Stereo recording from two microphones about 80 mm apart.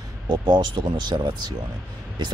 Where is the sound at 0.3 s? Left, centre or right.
Right.